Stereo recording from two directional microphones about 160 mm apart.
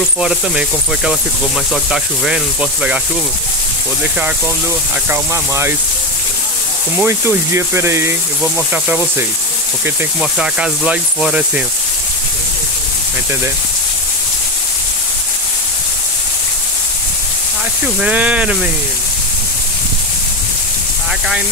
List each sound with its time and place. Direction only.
0.2 s speech: 5° right (ahead or behind)
5.1 s speech: 15° right (ahead or behind)
7.0 s speech: 15° right (ahead or behind)
18.0 s speech: 10° right (ahead or behind)